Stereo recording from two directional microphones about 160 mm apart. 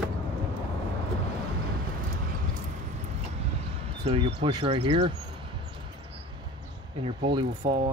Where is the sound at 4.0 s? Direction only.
35° right (ahead or behind).